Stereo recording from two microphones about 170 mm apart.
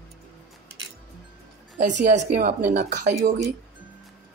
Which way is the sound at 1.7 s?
45° right (ahead or behind).